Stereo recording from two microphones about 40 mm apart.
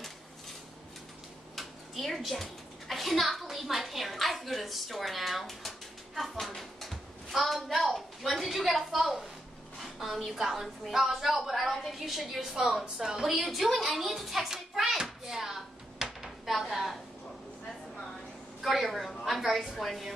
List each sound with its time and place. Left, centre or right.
1.5 s a child's voice: centre
9.8 s a sound: centre
10.2 s a woman's voice: centre
12.8 s music: centre
18.6 s a woman's voice: centre